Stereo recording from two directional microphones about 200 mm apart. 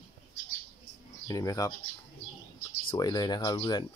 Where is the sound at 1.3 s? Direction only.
15° left (ahead or behind).